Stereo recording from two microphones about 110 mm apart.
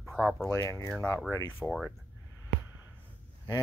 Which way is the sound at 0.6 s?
30° left (ahead or behind).